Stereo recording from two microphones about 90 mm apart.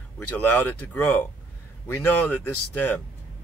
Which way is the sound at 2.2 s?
20° left (ahead or behind).